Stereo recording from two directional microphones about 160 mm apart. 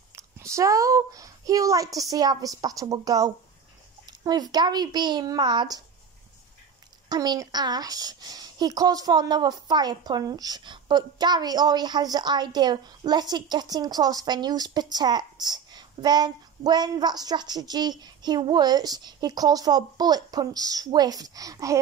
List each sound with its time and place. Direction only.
0.1 s a woman's voice: 20° right (ahead or behind)
7.1 s a woman's voice: 25° right (ahead or behind)